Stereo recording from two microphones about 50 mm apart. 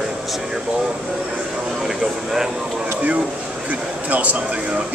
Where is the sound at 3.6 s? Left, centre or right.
Right.